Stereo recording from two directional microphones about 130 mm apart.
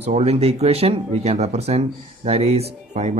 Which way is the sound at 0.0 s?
55° right (ahead or behind).